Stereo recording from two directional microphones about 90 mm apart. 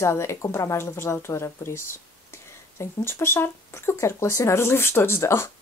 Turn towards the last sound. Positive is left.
turn(degrees=30)  # may be behind; listen again after turning